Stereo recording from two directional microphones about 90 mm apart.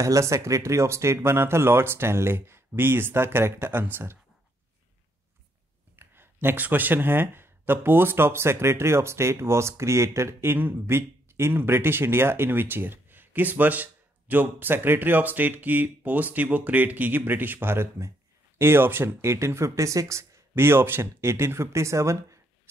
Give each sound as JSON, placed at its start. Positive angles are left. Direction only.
{"t": 0.0, "sound": "speech", "side_deg": -35}
{"t": 5.9, "sound": "speech", "side_deg": -25}